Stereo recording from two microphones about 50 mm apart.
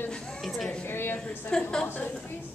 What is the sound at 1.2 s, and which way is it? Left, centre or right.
Speech, left.